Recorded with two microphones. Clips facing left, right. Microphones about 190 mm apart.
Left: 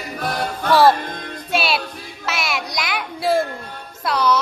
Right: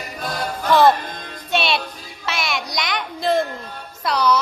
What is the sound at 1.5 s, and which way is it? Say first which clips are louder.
Music: even; 5° left (ahead or behind).